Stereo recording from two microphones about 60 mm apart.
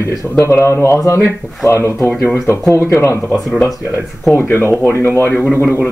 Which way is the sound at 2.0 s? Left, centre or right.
Left.